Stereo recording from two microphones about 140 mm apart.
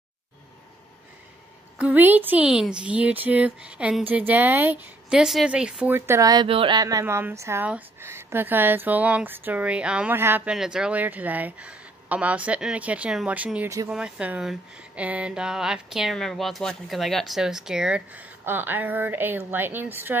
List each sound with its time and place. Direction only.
1.8 s a woman's voice: 10° right (ahead or behind)
6.4 s speech: 40° right (ahead or behind)
6.8 s a woman's voice: 25° right (ahead or behind)